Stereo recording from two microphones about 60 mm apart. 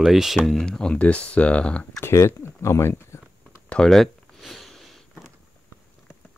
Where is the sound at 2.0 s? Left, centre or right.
Left.